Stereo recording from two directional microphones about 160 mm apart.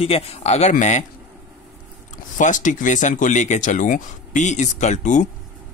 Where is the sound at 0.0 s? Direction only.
40° left (ahead or behind).